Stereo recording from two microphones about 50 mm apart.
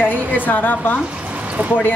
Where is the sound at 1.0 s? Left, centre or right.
Right.